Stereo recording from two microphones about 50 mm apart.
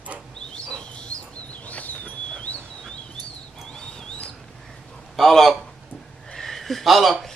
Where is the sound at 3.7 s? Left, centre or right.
Centre.